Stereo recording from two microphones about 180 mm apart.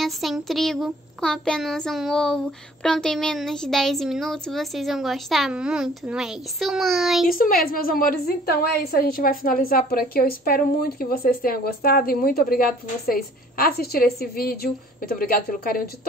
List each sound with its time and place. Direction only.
0.0 s child singing: centre (ahead or behind)
7.2 s a woman's voice: 50° left (ahead or behind)